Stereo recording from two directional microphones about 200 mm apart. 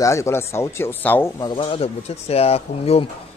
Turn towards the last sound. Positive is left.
turn(degrees=30)  # may be behind; listen again after turning